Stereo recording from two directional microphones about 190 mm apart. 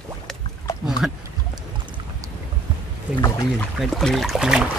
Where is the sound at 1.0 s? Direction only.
5° right (ahead or behind).